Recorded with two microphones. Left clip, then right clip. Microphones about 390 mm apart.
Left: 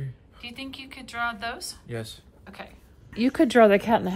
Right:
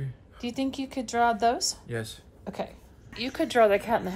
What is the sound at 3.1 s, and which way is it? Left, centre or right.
Speech, centre.